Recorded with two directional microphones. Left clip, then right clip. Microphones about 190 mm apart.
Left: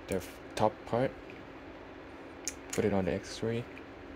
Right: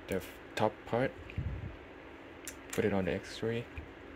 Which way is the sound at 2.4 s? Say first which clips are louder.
Left 1 dB; 5° right (ahead or behind).